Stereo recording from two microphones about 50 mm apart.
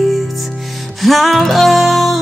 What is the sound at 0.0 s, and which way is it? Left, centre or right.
Music, centre.